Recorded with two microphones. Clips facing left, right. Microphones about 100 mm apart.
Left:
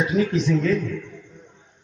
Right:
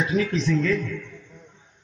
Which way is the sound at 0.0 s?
20° left (ahead or behind).